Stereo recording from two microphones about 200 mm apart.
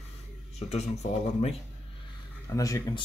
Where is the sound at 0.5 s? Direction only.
35° left (ahead or behind).